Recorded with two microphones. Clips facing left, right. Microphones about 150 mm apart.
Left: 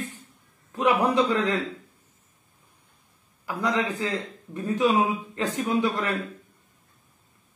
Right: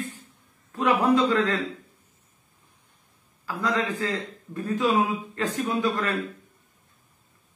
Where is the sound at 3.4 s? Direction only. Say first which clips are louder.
Left 1 dB; 20° left (ahead or behind).